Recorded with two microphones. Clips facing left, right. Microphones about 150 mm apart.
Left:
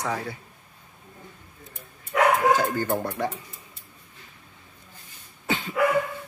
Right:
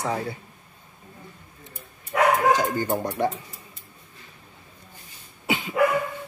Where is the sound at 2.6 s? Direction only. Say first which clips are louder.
Right 1 dB; 15° right (ahead or behind).